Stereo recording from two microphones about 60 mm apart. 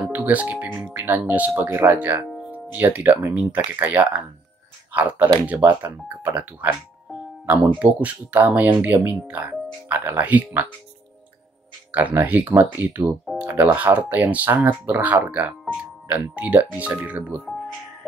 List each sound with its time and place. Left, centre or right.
0.0 s speech: right
1.7 s speech: right
2.2 s music: centre
2.5 s speech: right
11.9 s speech: right